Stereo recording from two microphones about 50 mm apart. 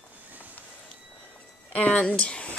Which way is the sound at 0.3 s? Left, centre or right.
Right.